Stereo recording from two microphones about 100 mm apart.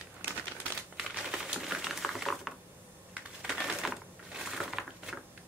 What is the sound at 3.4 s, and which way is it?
Crushing, 5° right (ahead or behind).